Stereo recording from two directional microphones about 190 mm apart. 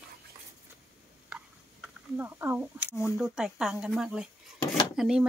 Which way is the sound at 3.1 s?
5° right (ahead or behind).